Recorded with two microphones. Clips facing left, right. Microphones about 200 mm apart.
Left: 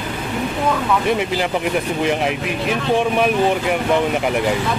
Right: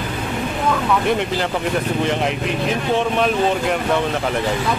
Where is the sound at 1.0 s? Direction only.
5° left (ahead or behind).